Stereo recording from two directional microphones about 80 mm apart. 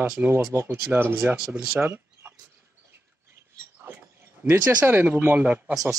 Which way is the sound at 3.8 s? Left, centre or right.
Right.